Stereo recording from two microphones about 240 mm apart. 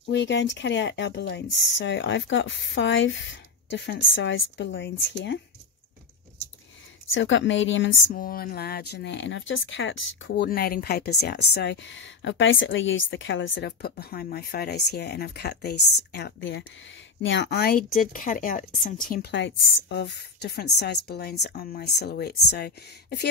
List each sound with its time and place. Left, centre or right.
0.1 s a woman's voice: left
7.2 s a woman's voice: left
8.2 s a woman's voice: left
19.3 s a woman's voice: left